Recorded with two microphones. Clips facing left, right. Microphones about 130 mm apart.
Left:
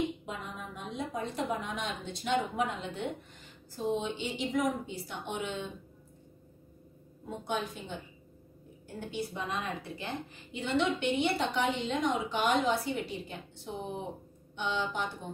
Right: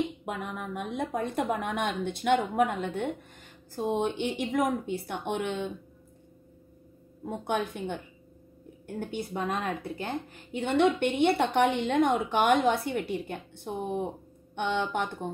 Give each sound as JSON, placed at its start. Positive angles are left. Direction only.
{"t": 0.2, "sound": "a woman's voice", "side_deg": -60}
{"t": 7.2, "sound": "a woman's voice", "side_deg": -55}